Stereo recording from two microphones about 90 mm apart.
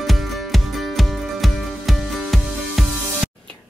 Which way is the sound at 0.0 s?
Centre (ahead or behind).